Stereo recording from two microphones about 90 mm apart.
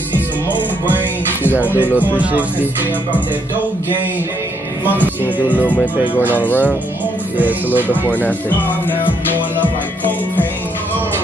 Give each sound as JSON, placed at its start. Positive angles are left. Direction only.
{"t": 0.5, "sound": "music", "side_deg": -20}
{"t": 1.6, "sound": "speech", "side_deg": -20}
{"t": 4.8, "sound": "speech", "side_deg": -20}
{"t": 5.5, "sound": "speech", "side_deg": 15}
{"t": 7.3, "sound": "speech", "side_deg": -20}
{"t": 8.0, "sound": "speech", "side_deg": 20}